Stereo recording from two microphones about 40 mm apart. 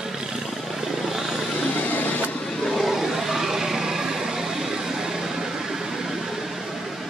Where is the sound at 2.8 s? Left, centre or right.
Centre.